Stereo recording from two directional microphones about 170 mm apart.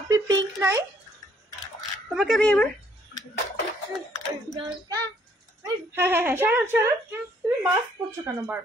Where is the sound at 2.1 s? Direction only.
5° left (ahead or behind).